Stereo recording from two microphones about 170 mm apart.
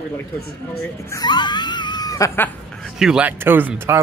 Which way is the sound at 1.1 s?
25° left (ahead or behind).